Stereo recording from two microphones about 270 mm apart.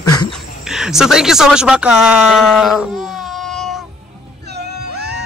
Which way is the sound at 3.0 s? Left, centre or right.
Centre.